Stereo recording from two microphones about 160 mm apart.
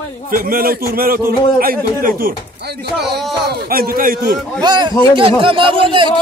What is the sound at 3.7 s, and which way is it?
Speech, 65° right (ahead or behind).